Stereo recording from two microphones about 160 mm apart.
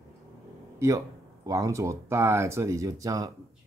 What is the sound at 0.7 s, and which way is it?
Speech, 20° right (ahead or behind).